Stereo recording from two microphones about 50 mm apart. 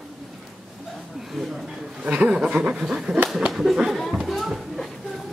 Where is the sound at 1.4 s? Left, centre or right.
Centre.